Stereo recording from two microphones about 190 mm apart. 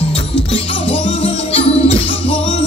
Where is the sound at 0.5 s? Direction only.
30° left (ahead or behind).